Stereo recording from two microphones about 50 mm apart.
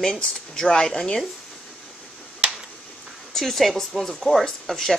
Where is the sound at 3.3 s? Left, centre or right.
Centre.